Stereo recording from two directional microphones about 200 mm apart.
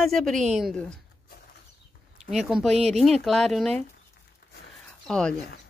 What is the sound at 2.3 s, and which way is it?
Speech, centre (ahead or behind).